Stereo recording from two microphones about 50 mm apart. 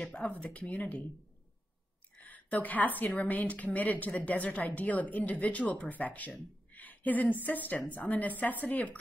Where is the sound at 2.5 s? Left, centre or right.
Left.